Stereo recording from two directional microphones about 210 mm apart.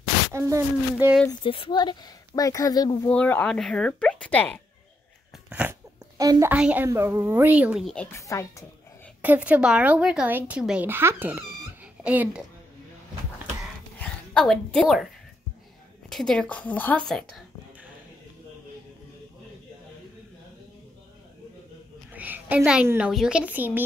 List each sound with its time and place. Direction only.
0.3 s speech: 15° right (ahead or behind)
1.4 s speech: 25° left (ahead or behind)
3.1 s a woman's voice: 5° left (ahead or behind)
5.5 s speech: 5° right (ahead or behind); by 8.6 s 15° left (ahead or behind)
9.2 s speech: 10° right (ahead or behind)
13.9 s a woman's voice: 5° left (ahead or behind)
16.1 s a woman's voice: centre (ahead or behind)
22.1 s a woman's voice: 10° right (ahead or behind)